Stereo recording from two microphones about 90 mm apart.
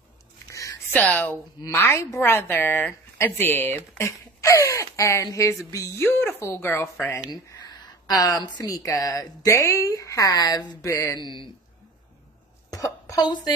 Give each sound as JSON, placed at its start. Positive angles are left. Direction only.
{"t": 0.5, "sound": "a sound", "side_deg": 35}
{"t": 0.9, "sound": "speech", "side_deg": 15}
{"t": 1.8, "sound": "speech", "side_deg": 30}
{"t": 6.0, "sound": "speech", "side_deg": 25}
{"t": 7.8, "sound": "a sound", "side_deg": 40}
{"t": 8.6, "sound": "speech", "side_deg": 40}
{"t": 10.8, "sound": "speech", "side_deg": 35}
{"t": 11.1, "sound": "speech", "side_deg": 55}
{"t": 12.7, "sound": "a sound", "side_deg": 40}